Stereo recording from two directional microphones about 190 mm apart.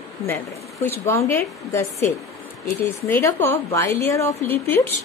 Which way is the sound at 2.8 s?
15° left (ahead or behind).